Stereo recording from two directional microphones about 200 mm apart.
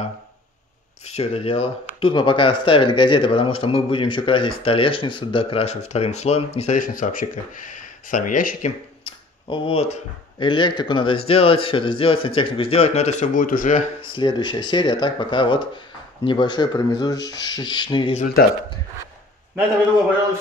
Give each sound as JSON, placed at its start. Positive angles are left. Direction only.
{"t": 1.0, "sound": "speech", "side_deg": 30}
{"t": 9.0, "sound": "a sound", "side_deg": 25}
{"t": 10.4, "sound": "speech", "side_deg": 25}
{"t": 14.1, "sound": "speech", "side_deg": 20}